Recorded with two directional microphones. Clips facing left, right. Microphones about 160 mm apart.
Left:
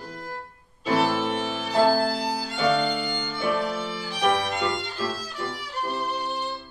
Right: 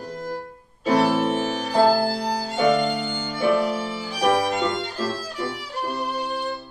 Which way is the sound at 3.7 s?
35° right (ahead or behind).